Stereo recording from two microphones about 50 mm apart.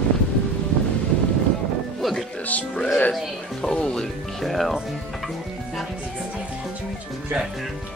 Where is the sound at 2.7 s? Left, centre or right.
Centre.